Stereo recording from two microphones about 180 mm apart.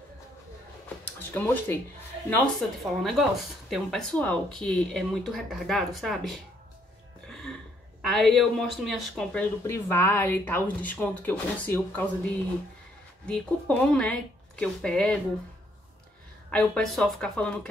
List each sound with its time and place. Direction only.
1.3 s speech: 10° left (ahead or behind)
8.0 s speech: centre (ahead or behind)
16.4 s speech: 5° left (ahead or behind)